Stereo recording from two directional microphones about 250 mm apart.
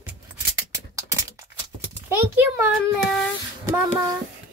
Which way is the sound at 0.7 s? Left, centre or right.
Centre.